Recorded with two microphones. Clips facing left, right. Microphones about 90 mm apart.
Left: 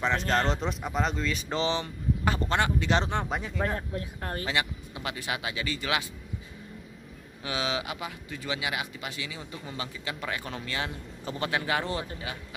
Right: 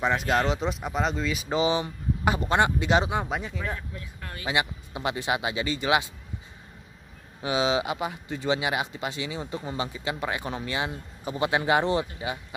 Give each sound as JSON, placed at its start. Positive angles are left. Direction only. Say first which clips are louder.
{"t": 0.0, "sound": "speech", "louder": "right 2 dB", "side_deg": -10}
{"t": 3.0, "sound": "speech", "louder": "right 2 dB", "side_deg": -5}
{"t": 3.5, "sound": "speech", "louder": "left 4 dB", "side_deg": 50}
{"t": 4.5, "sound": "speech", "louder": "right 7 dB", "side_deg": -20}
{"t": 7.4, "sound": "speech", "louder": "right 6 dB", "side_deg": -20}